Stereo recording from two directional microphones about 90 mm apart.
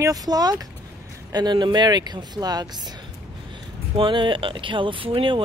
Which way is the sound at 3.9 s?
65° right (ahead or behind).